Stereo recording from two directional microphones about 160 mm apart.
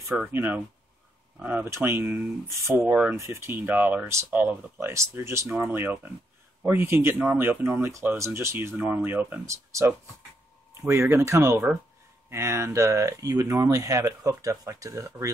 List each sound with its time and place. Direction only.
0.3 s speech: 10° right (ahead or behind)